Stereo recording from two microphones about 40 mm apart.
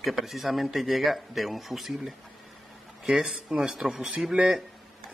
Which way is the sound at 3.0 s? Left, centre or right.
Centre.